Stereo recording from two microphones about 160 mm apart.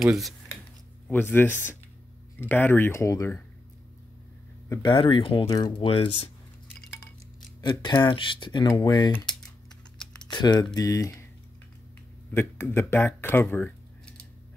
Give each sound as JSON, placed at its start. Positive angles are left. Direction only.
{"t": 0.0, "sound": "speech", "side_deg": 0}
{"t": 1.1, "sound": "speech", "side_deg": 10}
{"t": 4.6, "sound": "speech", "side_deg": 30}
{"t": 7.6, "sound": "speech", "side_deg": 25}
{"t": 10.3, "sound": "speech", "side_deg": 25}
{"t": 12.4, "sound": "speech", "side_deg": 15}